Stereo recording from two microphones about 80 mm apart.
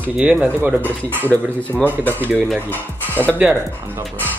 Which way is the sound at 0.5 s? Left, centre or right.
Right.